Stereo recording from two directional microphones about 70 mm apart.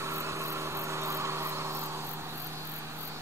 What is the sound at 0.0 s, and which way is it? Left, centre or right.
Vehicle, right.